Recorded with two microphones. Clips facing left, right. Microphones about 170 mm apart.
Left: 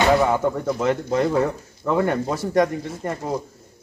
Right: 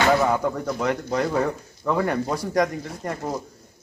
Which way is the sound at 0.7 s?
5° left (ahead or behind).